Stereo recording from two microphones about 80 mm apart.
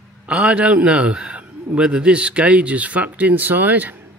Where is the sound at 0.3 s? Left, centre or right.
Centre.